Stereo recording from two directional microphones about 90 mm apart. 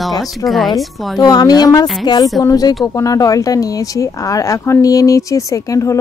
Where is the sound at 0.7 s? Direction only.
45° left (ahead or behind).